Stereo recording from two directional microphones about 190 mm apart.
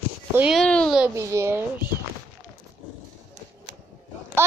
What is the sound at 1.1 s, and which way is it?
Child singing, 15° right (ahead or behind).